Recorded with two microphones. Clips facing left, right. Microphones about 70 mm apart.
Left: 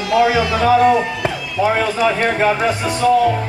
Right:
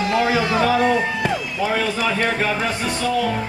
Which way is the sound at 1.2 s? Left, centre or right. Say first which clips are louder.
Left 3 dB; left.